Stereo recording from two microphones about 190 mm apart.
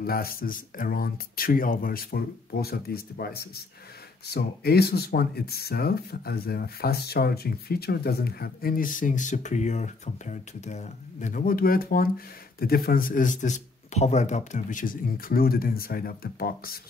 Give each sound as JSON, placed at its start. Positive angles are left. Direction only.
{"t": 0.0, "sound": "speech", "side_deg": 50}